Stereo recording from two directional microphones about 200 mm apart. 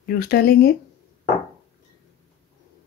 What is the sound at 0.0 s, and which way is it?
Speech, 50° left (ahead or behind).